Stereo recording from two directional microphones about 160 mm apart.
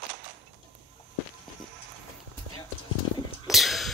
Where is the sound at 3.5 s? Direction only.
Centre (ahead or behind).